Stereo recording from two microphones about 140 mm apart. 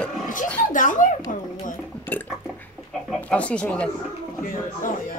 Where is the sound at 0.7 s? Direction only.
65° left (ahead or behind).